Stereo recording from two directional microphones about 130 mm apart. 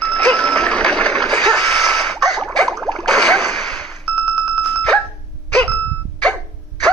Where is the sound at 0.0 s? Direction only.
5° left (ahead or behind).